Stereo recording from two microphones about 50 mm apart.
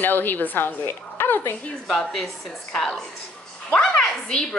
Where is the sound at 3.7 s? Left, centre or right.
Centre.